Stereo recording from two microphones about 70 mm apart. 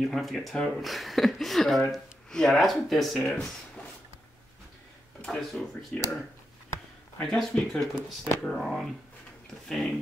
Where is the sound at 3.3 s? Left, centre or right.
Centre.